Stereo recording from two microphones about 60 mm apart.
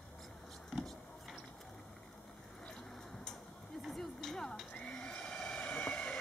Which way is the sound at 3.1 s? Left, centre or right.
Centre.